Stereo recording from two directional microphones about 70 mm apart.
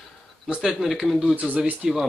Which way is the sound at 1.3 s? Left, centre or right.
Right.